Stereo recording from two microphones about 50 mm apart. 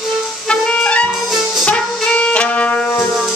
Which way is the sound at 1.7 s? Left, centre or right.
Left.